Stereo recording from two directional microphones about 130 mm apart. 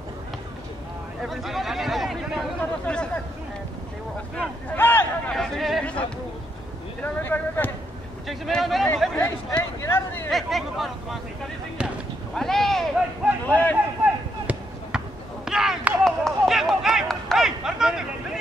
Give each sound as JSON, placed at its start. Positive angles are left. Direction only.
{"t": 1.2, "sound": "speech", "side_deg": 0}
{"t": 4.4, "sound": "speech", "side_deg": 15}
{"t": 5.3, "sound": "speech", "side_deg": 0}
{"t": 8.3, "sound": "speech", "side_deg": 0}
{"t": 10.3, "sound": "speech", "side_deg": 0}
{"t": 11.8, "sound": "a sound", "side_deg": -10}
{"t": 12.4, "sound": "a sound", "side_deg": 5}
{"t": 13.5, "sound": "speech", "side_deg": 10}
{"t": 14.4, "sound": "basketball bounce", "side_deg": -10}
{"t": 15.4, "sound": "run", "side_deg": -5}